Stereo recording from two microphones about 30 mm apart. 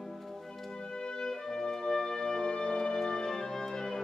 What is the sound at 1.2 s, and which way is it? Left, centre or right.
Music, left.